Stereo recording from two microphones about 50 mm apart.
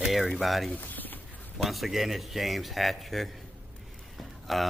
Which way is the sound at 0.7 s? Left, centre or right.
Left.